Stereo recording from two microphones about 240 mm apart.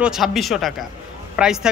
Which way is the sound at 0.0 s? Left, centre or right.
Centre.